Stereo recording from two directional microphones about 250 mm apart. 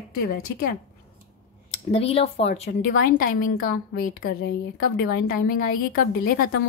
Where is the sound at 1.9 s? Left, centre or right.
Left.